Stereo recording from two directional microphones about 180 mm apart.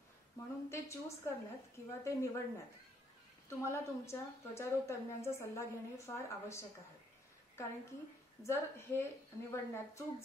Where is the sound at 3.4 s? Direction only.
15° left (ahead or behind).